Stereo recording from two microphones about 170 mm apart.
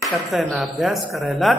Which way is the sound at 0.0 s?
Centre (ahead or behind).